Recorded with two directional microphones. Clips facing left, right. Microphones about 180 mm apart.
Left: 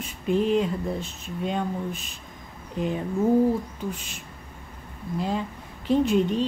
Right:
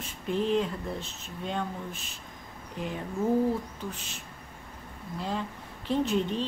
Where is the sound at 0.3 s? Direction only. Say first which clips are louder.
Left 5 dB; 15° left (ahead or behind).